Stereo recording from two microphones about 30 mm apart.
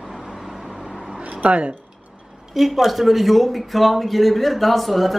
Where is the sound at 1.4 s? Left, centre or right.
Right.